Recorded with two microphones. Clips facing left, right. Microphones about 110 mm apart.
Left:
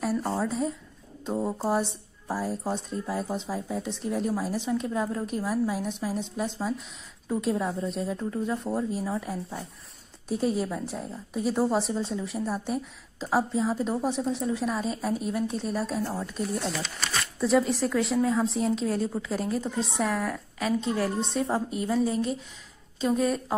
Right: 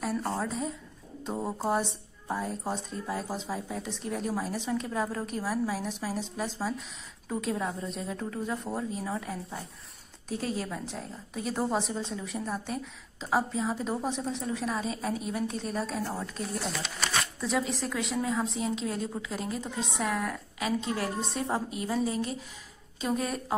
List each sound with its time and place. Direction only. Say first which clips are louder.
0.0 s a woman's voice: left 3 dB; 5° left (ahead or behind)
20.9 s a woman's voice: left 4 dB; 30° left (ahead or behind)
21.3 s a woman's voice: left 4 dB; centre (ahead or behind)
23.0 s a woman's voice: left 5 dB; centre (ahead or behind)